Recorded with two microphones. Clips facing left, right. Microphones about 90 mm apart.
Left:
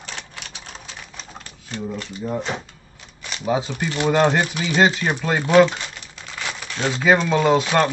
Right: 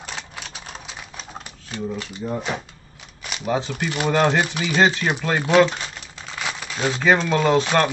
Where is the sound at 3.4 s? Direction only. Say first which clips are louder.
Left 1 dB; 5° left (ahead or behind).